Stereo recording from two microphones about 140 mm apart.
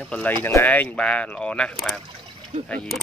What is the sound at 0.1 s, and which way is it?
Speech, 10° left (ahead or behind).